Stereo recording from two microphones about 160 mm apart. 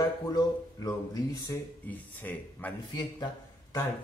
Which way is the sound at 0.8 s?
20° left (ahead or behind).